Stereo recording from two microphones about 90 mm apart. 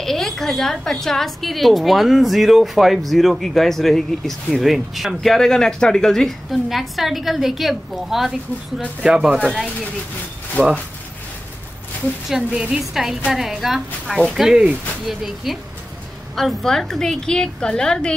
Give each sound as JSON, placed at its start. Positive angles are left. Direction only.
{"t": 0.0, "sound": "a woman's voice", "side_deg": 5}
{"t": 10.6, "sound": "speech", "side_deg": -25}
{"t": 12.3, "sound": "a woman's voice", "side_deg": -10}